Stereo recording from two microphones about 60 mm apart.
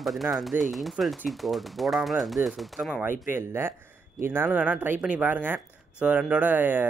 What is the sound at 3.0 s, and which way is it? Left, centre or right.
Speech, right.